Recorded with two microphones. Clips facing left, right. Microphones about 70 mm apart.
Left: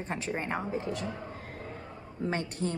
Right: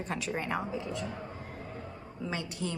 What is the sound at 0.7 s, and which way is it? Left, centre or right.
Speech, left.